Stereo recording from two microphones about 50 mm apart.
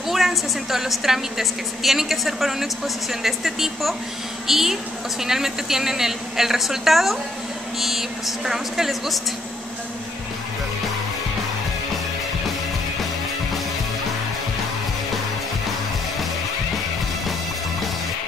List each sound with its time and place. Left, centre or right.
0.1 s a woman's voice: centre